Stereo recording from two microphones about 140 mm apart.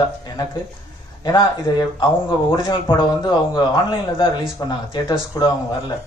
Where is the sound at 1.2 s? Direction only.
30° left (ahead or behind).